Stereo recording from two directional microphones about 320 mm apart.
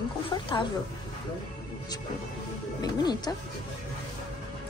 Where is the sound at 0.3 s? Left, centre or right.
Centre.